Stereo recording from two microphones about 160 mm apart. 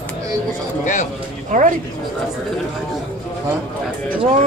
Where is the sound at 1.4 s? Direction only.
50° right (ahead or behind).